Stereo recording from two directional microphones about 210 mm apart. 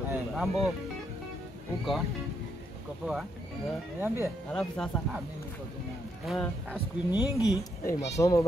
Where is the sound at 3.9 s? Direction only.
10° right (ahead or behind).